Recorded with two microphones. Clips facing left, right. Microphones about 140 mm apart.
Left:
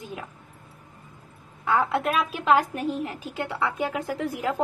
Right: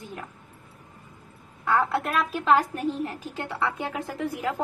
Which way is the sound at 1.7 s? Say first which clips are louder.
Left 1 dB; centre (ahead or behind).